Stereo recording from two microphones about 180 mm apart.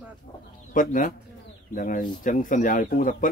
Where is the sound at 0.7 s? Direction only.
50° left (ahead or behind).